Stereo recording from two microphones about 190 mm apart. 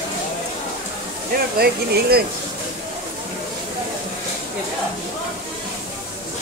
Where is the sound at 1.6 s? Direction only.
55° right (ahead or behind).